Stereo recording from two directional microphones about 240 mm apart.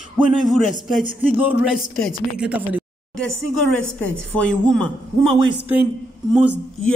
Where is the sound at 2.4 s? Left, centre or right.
Centre.